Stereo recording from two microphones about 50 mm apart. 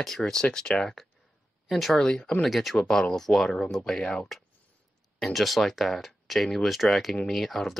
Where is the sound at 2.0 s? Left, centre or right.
Centre.